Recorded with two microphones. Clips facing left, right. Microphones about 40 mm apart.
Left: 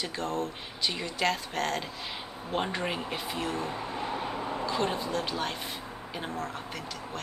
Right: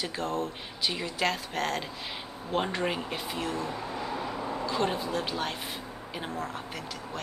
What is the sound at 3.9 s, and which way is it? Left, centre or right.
Vehicle, left.